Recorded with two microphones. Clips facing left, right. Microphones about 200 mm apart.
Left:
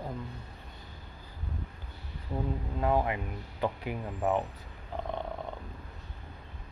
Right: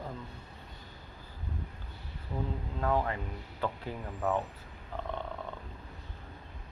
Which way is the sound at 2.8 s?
15° left (ahead or behind).